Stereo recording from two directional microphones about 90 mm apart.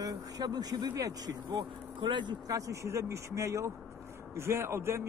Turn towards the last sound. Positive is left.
turn(degrees=-30)  # may be behind; listen again after turning